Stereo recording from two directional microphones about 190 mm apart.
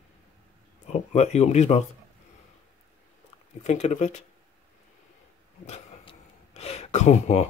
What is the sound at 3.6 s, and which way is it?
Speech, 35° left (ahead or behind).